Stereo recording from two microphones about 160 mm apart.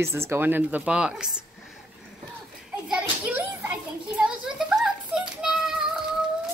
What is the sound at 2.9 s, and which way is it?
Children playing, 10° right (ahead or behind).